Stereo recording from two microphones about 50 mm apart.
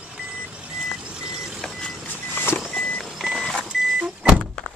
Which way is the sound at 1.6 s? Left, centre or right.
Centre.